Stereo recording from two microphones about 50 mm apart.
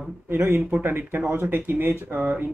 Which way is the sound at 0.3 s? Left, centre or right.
Right.